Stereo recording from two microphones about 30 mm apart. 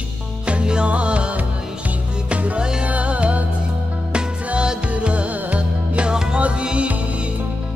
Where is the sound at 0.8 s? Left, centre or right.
Right.